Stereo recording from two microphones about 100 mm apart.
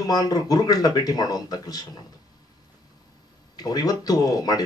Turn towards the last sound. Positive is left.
turn(degrees=40)  # may be behind; listen again after turning